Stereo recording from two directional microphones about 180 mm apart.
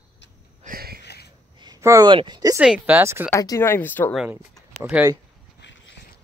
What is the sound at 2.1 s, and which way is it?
Speech, 25° right (ahead or behind).